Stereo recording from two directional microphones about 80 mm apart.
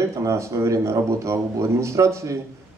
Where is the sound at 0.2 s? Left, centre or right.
Right.